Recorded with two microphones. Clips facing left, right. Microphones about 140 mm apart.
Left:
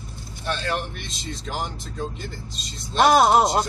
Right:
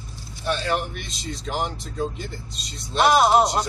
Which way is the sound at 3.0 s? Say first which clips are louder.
Left 1 dB; 40° left (ahead or behind).